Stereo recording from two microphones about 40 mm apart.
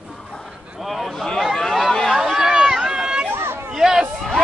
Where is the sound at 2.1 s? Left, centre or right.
Centre.